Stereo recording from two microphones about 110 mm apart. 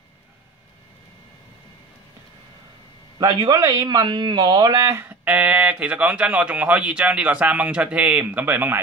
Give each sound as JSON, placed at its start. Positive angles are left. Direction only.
{"t": 3.2, "sound": "a man's voice", "side_deg": -40}
{"t": 4.8, "sound": "speech", "side_deg": -25}
{"t": 5.2, "sound": "speech", "side_deg": -10}